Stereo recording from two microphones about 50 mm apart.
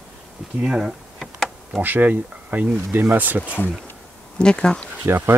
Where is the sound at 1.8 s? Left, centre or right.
Right.